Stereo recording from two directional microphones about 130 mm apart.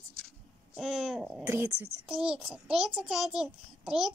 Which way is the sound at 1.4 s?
15° right (ahead or behind).